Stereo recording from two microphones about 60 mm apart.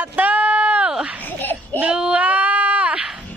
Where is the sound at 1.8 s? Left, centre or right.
Centre.